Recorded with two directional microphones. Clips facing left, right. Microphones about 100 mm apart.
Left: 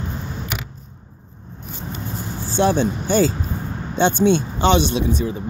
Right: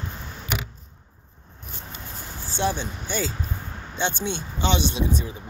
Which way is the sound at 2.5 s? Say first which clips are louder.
Left 8 dB; 55° left (ahead or behind).